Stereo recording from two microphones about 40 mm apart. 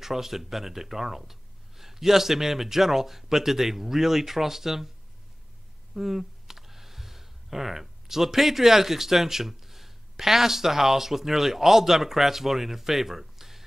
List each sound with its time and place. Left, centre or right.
0.0 s speech: centre
5.9 s speech: centre